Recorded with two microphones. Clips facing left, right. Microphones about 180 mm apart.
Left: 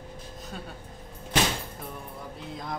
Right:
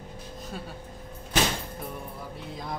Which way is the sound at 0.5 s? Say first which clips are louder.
Right 2 dB; centre (ahead or behind).